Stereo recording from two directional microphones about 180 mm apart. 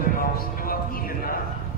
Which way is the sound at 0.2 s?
55° left (ahead or behind).